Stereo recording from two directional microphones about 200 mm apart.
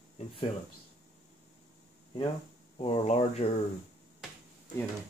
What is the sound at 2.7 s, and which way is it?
Speech, 30° left (ahead or behind).